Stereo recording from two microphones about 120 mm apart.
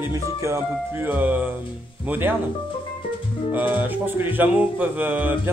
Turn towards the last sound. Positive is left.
turn(degrees=-15)  # may be behind; listen again after turning